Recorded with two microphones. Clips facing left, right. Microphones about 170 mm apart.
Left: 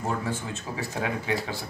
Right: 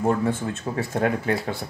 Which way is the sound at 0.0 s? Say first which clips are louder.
Right 7 dB; 55° right (ahead or behind).